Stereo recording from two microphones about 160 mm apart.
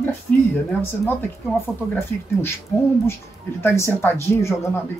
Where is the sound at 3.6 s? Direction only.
15° left (ahead or behind).